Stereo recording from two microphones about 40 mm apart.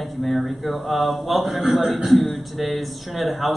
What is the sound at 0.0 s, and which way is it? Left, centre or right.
A man's voice, centre.